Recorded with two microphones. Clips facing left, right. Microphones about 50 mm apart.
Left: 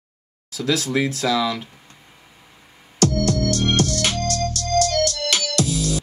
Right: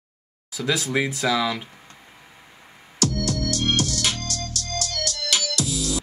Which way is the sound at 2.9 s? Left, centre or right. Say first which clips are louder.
Left 5 dB; left.